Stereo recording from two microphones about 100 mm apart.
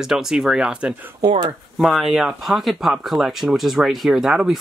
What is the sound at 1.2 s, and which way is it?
Speech, 55° right (ahead or behind).